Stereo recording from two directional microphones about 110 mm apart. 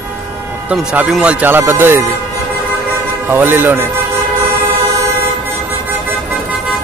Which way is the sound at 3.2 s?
20° right (ahead or behind).